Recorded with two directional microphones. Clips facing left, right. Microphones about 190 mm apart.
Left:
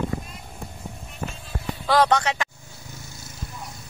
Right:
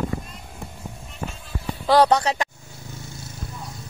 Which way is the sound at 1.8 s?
35° right (ahead or behind).